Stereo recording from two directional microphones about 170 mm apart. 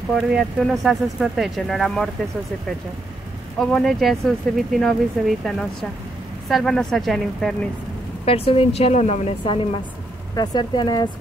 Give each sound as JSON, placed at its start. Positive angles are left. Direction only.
{"t": 0.1, "sound": "speech", "side_deg": -5}
{"t": 3.5, "sound": "speech", "side_deg": 0}
{"t": 8.3, "sound": "a woman's voice", "side_deg": 35}
{"t": 10.3, "sound": "speech", "side_deg": 25}